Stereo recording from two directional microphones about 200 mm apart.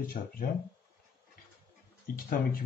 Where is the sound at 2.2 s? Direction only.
45° left (ahead or behind).